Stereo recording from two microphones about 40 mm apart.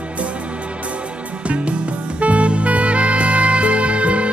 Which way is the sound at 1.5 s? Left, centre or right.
Right.